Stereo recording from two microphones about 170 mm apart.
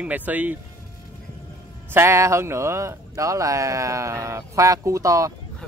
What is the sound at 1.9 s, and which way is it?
Speech, 15° right (ahead or behind).